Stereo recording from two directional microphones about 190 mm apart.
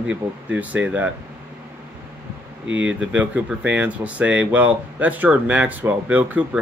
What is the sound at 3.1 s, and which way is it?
Speech, 5° right (ahead or behind).